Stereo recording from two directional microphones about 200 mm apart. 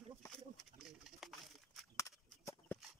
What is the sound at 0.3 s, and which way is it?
Bird, centre (ahead or behind).